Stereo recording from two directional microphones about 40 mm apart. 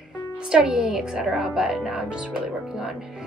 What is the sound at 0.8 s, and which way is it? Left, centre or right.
Speech, centre.